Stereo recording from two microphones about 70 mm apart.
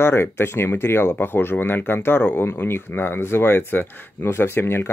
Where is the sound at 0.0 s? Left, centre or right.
Left.